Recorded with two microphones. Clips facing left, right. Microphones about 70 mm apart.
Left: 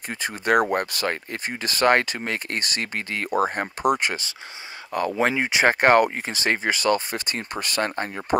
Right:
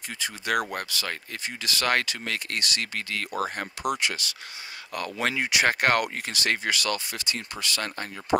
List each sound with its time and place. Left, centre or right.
0.2 s speech: left
4.9 s speech: left